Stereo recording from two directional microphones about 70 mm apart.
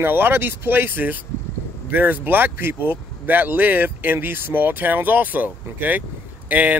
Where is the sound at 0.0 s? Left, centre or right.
Right.